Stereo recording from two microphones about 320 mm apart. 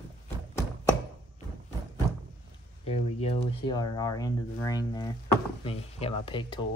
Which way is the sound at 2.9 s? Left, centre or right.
Centre.